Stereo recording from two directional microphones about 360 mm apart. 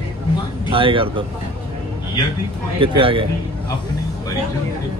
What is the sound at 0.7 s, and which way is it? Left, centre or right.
Speech, centre.